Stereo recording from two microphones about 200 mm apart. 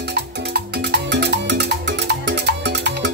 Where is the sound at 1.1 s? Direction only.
55° right (ahead or behind).